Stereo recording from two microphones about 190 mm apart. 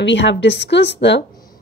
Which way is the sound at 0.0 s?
70° left (ahead or behind).